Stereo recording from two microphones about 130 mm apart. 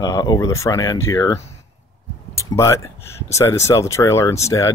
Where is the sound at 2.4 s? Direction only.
25° left (ahead or behind).